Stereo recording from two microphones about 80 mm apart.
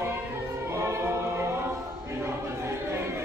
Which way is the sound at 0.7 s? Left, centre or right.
Right.